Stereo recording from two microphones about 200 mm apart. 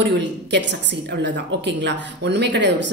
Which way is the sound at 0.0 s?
60° right (ahead or behind).